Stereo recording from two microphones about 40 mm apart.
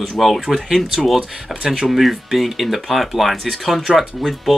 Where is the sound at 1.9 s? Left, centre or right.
Centre.